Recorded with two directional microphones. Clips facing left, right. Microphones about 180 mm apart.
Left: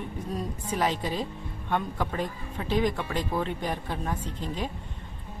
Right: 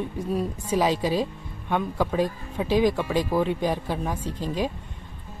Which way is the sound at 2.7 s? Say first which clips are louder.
Right 5 dB; 90° right.